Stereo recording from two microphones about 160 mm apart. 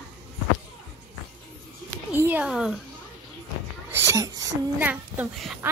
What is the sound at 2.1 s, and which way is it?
Cat, 10° right (ahead or behind).